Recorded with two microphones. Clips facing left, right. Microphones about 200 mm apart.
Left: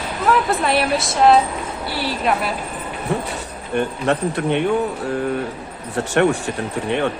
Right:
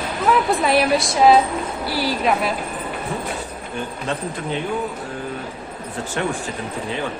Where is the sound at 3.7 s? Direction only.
65° left (ahead or behind).